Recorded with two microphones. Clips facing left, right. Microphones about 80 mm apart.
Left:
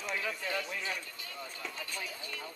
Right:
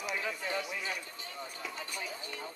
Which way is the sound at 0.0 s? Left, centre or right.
Centre.